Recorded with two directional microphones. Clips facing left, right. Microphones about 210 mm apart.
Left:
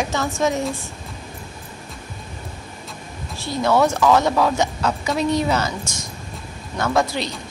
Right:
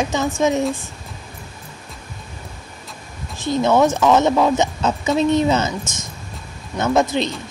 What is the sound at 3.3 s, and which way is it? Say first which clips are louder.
Speech: right 3 dB; 20° right (ahead or behind).